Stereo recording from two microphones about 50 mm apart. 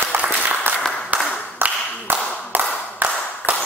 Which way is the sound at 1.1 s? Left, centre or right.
Right.